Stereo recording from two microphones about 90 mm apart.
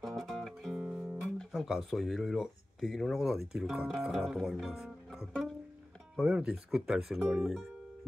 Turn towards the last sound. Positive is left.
turn(degrees=-5)  # may be behind; listen again after turning